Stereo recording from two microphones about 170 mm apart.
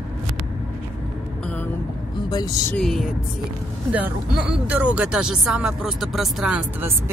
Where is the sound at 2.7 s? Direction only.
5° left (ahead or behind).